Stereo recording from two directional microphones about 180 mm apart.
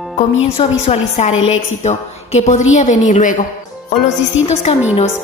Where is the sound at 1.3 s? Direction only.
90° left.